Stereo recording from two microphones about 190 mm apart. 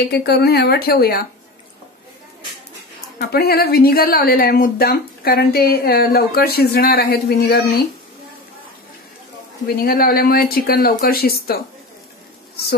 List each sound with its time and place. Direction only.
0.1 s a woman's voice: 55° left (ahead or behind)
3.2 s a woman's voice: 55° left (ahead or behind)
9.8 s a woman's voice: 50° left (ahead or behind)